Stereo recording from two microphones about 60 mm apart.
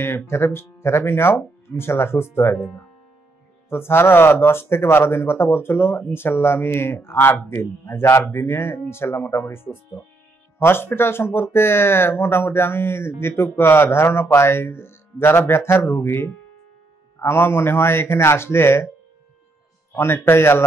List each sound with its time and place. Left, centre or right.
0.0 s a man's voice: left
3.6 s a man's voice: left
19.9 s a man's voice: left